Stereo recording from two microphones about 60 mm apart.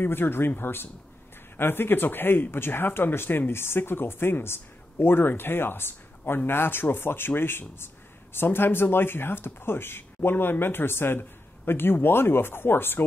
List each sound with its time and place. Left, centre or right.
0.0 s speech: left